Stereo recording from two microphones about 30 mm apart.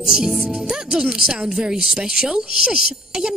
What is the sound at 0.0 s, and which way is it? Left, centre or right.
Speech, right.